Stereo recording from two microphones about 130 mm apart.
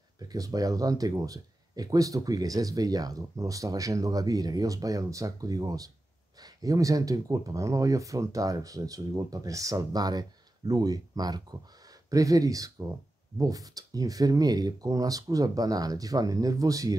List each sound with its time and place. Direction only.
0.3 s speech: 30° right (ahead or behind)